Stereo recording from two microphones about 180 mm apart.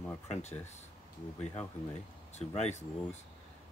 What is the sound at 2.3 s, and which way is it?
Speech, 40° left (ahead or behind).